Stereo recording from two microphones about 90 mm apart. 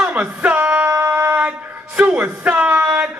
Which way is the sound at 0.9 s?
25° right (ahead or behind).